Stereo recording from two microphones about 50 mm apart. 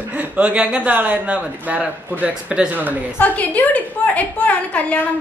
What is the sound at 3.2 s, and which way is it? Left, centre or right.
A woman's voice, left.